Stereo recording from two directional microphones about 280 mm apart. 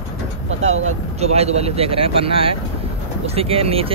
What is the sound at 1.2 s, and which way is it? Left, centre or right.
A man's voice, right.